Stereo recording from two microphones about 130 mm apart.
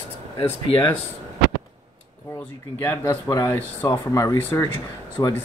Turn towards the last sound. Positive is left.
turn(degrees=25)  # may be behind; listen again after turning